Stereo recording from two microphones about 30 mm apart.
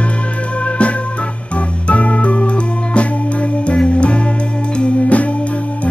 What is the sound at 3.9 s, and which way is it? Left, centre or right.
Music, left.